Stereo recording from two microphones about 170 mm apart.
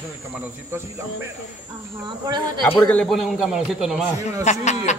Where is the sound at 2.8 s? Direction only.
5° left (ahead or behind).